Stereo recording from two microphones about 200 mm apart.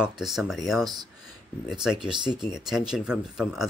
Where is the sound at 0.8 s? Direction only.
20° right (ahead or behind).